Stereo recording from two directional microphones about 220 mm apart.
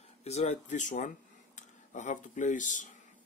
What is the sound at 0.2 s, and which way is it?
Speech, 30° left (ahead or behind).